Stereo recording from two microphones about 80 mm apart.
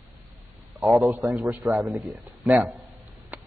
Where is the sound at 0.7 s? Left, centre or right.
Centre.